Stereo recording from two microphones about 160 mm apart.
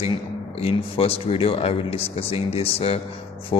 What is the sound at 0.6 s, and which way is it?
Speech, 40° left (ahead or behind).